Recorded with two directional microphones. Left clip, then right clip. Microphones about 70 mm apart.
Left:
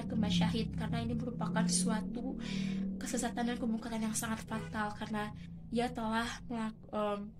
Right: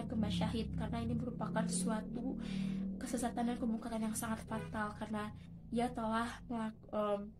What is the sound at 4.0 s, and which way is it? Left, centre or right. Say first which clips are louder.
Speech: left 3 dB; centre.